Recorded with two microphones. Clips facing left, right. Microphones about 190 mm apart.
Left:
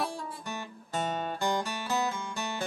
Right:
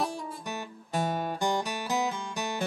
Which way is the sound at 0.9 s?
10° right (ahead or behind).